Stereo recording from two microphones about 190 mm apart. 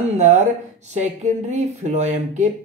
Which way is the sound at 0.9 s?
40° right (ahead or behind).